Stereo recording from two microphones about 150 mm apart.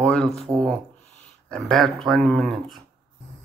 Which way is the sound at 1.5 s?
Centre (ahead or behind).